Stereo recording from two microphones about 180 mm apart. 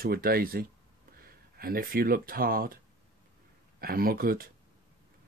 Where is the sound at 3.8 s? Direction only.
55° right (ahead or behind).